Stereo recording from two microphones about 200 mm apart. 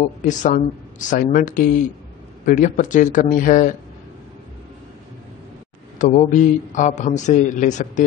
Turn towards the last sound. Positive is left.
turn(degrees=40)  # may be behind; listen again after turning